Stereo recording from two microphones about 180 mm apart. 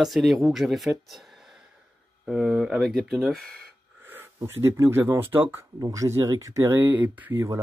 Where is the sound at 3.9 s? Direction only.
10° right (ahead or behind).